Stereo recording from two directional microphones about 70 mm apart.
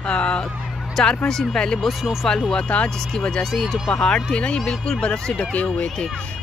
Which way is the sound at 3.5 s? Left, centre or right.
Centre.